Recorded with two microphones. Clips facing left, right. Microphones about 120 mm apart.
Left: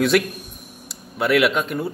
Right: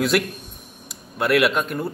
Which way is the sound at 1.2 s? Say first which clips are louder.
Left 1 dB; centre (ahead or behind).